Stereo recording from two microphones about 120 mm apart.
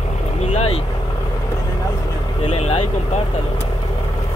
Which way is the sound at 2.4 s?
50° left (ahead or behind).